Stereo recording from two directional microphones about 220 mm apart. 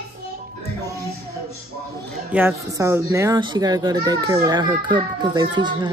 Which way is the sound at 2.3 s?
10° right (ahead or behind).